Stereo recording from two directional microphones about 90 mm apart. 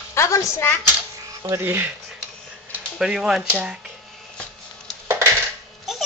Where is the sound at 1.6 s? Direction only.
20° right (ahead or behind).